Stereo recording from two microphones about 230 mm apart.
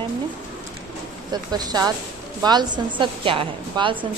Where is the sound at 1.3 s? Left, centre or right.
Centre.